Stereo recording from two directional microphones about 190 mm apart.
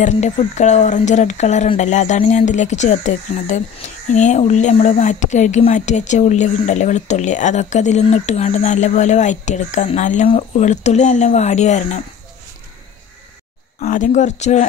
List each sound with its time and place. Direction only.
0.0 s speech: 40° left (ahead or behind)
13.7 s speech: 40° left (ahead or behind)